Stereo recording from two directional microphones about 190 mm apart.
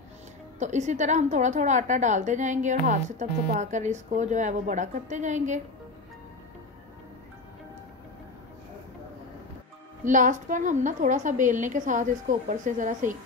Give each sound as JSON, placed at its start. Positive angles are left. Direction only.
{"t": 0.6, "sound": "a woman's voice", "side_deg": -40}
{"t": 10.0, "sound": "a woman's voice", "side_deg": -40}